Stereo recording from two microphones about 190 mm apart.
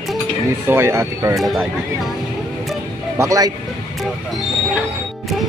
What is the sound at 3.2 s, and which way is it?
Speech, 15° right (ahead or behind).